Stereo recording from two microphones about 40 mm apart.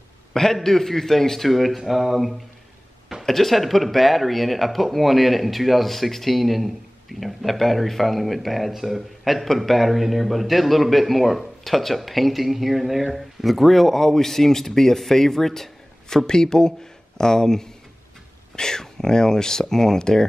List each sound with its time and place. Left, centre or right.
0.3 s a man's voice: centre